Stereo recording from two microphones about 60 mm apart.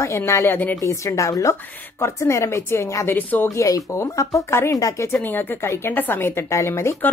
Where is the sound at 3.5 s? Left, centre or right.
Left.